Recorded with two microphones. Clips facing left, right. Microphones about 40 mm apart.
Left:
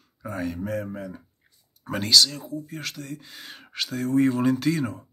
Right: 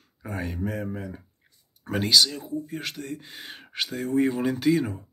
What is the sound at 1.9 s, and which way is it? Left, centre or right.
Speech, centre.